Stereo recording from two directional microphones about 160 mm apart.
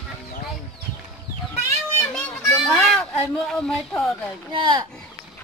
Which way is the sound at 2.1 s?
5° left (ahead or behind).